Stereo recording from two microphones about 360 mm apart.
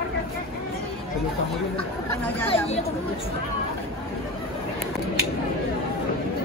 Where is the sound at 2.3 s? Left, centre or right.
Centre.